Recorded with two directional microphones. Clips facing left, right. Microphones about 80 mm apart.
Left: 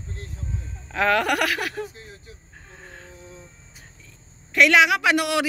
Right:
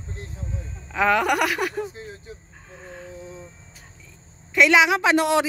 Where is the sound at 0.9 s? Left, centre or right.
Centre.